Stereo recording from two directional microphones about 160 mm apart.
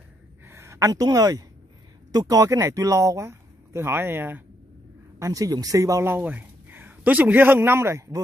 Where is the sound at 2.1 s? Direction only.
20° right (ahead or behind).